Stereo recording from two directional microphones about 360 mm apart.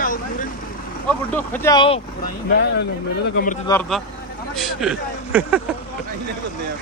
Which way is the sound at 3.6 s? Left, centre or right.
Centre.